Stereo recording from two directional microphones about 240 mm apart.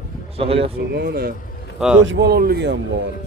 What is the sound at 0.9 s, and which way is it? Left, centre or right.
Speech, right.